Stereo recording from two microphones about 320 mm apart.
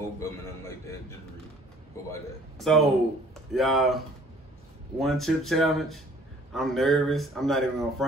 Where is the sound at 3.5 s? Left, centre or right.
Centre.